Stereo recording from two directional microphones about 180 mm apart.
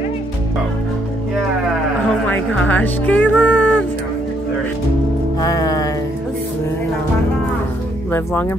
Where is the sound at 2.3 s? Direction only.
10° left (ahead or behind).